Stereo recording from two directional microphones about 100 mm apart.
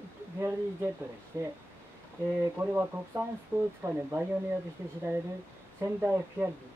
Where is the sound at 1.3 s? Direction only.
30° right (ahead or behind).